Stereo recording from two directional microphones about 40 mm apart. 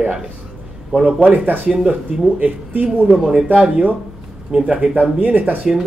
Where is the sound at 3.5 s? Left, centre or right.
Right.